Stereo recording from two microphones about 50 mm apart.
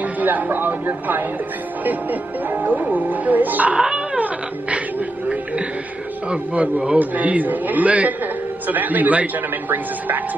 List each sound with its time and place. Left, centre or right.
0.0 s a woman's voice: right
3.8 s dog: centre
4.2 s music: right
4.9 s a sound: right
6.2 s a man's voice: right